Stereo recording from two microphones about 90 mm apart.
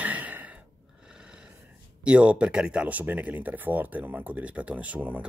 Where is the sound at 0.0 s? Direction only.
15° right (ahead or behind).